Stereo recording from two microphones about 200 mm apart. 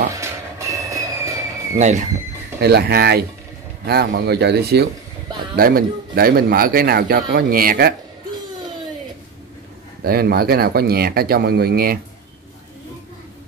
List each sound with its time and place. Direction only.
0.1 s train: 15° right (ahead or behind)
1.8 s speech: 35° right (ahead or behind)
2.6 s a man's voice: 55° right (ahead or behind)
10.0 s a man's voice: 50° right (ahead or behind)